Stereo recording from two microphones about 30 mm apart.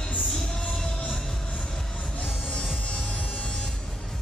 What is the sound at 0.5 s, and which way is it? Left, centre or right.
Music, centre.